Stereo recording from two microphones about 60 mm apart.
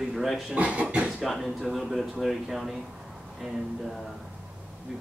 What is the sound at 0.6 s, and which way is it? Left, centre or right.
Speech, right.